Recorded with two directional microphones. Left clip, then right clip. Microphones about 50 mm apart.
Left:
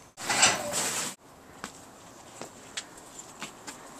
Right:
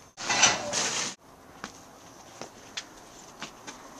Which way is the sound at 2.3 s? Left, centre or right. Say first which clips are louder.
Right 1 dB; centre.